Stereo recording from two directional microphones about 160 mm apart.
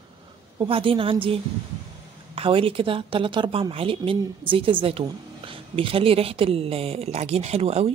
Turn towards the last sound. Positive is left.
turn(degrees=-40)  # may be behind; listen again after turning